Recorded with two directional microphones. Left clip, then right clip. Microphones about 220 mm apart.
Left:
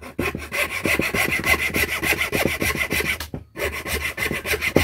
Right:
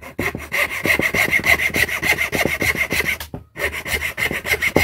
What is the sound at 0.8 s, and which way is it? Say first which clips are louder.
Wood: right 4 dB; 20° left (ahead or behind).